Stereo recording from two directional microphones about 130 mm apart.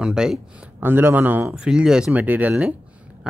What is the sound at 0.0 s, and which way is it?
Speech, 5° right (ahead or behind).